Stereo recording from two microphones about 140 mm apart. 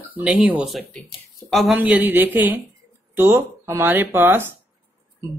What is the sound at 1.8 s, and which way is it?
Speech, 10° right (ahead or behind).